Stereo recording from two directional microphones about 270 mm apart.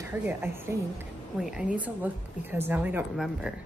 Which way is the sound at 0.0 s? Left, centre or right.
Centre.